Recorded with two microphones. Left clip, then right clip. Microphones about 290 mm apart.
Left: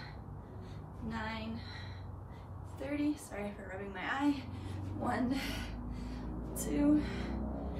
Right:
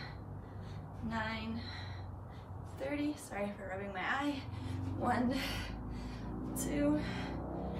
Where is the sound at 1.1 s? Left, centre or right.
Centre.